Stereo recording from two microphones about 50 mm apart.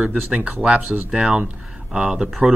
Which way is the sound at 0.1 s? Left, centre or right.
Right.